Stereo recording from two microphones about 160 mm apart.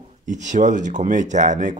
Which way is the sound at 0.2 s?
50° right (ahead or behind).